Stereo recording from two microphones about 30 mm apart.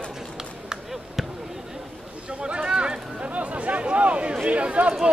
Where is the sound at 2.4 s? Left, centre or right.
Right.